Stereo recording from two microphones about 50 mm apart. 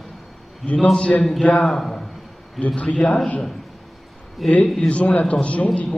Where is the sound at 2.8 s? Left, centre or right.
Left.